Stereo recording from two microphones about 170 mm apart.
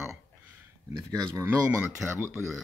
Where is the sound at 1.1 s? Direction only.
15° right (ahead or behind).